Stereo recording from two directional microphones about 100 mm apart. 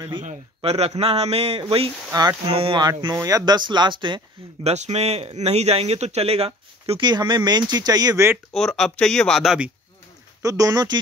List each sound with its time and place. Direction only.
0.1 s a man's voice: 80° right
1.6 s speech: 70° right (ahead or behind)
2.8 s speech: 40° right (ahead or behind)
4.6 s speech: 90° right
7.0 s speech: 45° right (ahead or behind)
8.5 s speech: 5° left (ahead or behind)
10.4 s speech: 35° right (ahead or behind)